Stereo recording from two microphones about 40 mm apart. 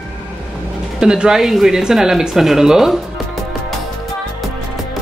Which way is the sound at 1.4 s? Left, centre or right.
Centre.